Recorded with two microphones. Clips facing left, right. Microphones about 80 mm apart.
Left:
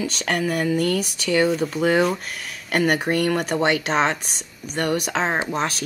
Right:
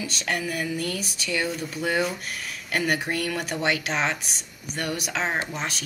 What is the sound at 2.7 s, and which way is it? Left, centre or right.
Speech, left.